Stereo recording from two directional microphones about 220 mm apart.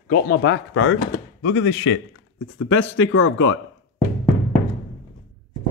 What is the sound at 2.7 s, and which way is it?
Speech, 65° left (ahead or behind).